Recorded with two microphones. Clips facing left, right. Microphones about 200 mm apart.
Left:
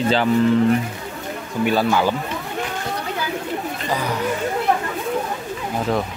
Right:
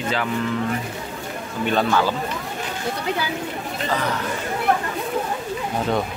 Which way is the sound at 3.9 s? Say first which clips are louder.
Even; 10° left (ahead or behind).